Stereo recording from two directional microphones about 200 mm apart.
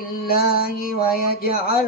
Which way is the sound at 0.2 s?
50° left (ahead or behind).